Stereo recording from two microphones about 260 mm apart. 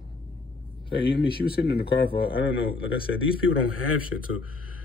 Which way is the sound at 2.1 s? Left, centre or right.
Centre.